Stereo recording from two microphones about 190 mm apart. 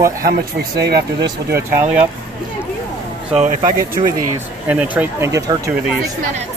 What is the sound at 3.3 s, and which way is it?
Speech, 30° right (ahead or behind).